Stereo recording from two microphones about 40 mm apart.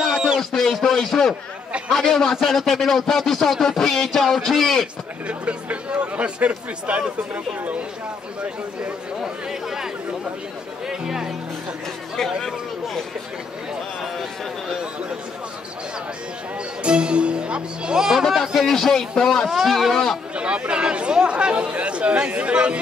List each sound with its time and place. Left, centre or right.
0.4 s a sound: centre
0.9 s a man's voice: centre
5.4 s speech: right
9.2 s speech: centre
10.9 s speech: centre
12.4 s a sound: centre
16.8 s speech: right
18.1 s speech: centre
20.3 s speech: right